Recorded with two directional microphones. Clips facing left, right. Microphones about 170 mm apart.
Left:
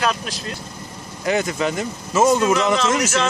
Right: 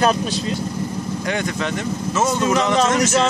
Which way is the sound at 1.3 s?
5° left (ahead or behind).